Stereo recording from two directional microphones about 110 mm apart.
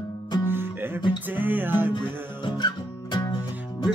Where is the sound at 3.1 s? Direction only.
40° left (ahead or behind).